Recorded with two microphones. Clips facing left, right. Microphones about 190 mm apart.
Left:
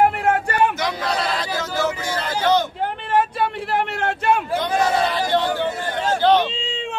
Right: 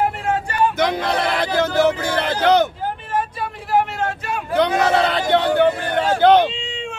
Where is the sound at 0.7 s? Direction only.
55° right (ahead or behind).